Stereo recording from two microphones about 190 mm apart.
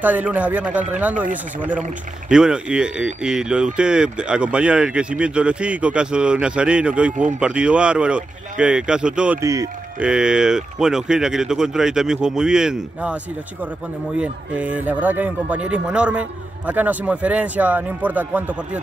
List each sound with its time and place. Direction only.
0.0 s speech: 10° right (ahead or behind)
9.4 s speech: 15° right (ahead or behind)
10.0 s speech: 5° right (ahead or behind)